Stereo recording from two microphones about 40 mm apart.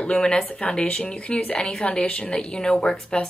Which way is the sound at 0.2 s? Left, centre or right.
Left.